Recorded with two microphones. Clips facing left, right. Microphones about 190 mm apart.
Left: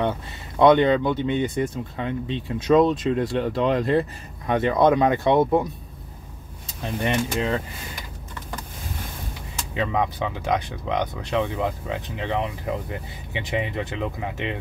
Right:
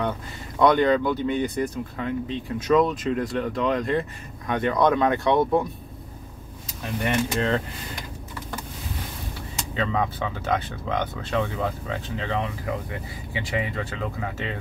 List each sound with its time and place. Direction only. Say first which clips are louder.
0.6 s speech: left 3 dB; 25° left (ahead or behind)
7.0 s speech: even; 20° left (ahead or behind)
9.8 s speech: left 2 dB; 15° left (ahead or behind)